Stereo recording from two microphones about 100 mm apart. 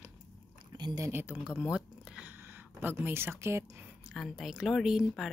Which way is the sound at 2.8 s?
20° right (ahead or behind).